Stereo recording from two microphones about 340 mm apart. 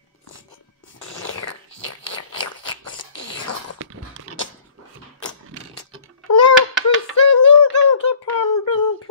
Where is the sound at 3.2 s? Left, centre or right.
Left.